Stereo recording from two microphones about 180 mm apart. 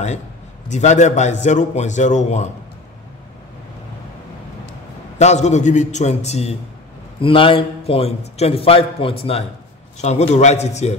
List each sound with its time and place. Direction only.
0.7 s a man's voice: 40° left (ahead or behind)
5.2 s a man's voice: 40° left (ahead or behind)